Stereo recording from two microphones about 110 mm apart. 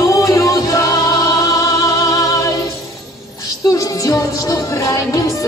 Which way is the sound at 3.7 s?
30° left (ahead or behind).